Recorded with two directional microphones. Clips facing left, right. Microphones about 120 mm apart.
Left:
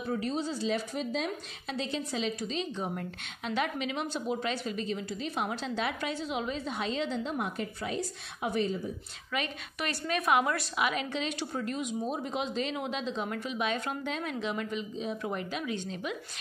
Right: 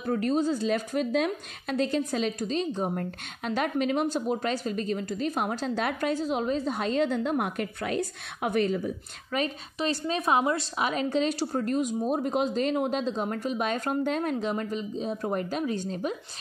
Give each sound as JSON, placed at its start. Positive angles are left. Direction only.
{"t": 0.0, "sound": "a woman's voice", "side_deg": -50}
{"t": 9.3, "sound": "a woman's voice", "side_deg": -40}
{"t": 9.8, "sound": "a woman's voice", "side_deg": -25}